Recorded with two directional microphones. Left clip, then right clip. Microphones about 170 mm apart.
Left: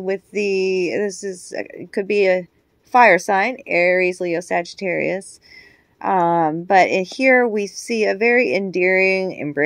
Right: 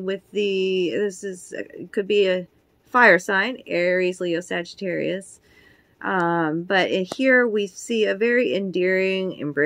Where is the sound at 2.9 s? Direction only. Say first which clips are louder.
Left 3 dB; 25° left (ahead or behind).